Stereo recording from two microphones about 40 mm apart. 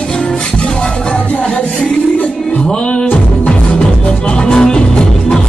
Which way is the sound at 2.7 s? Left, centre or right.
Left.